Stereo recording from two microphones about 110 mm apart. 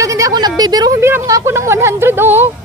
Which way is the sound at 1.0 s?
25° right (ahead or behind).